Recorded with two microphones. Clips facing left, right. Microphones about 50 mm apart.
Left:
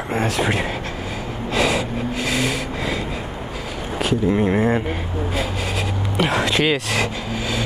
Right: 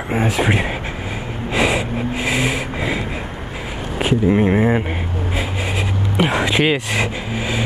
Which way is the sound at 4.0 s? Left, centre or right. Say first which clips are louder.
Right 3 dB; right.